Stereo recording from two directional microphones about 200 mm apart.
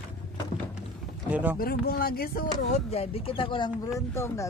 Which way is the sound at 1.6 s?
50° left (ahead or behind).